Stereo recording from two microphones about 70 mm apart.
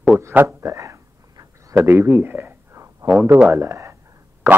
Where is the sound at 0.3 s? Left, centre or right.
Right.